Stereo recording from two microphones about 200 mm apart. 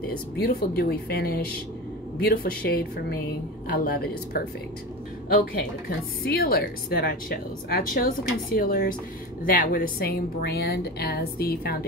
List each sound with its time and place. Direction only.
0.4 s speech: 50° left (ahead or behind)
5.3 s speech: 45° left (ahead or behind)